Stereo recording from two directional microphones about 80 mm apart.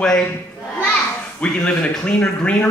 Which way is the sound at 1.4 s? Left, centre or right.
Centre.